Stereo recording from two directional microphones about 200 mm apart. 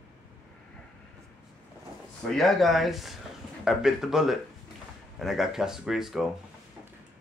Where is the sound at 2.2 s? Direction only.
Centre (ahead or behind).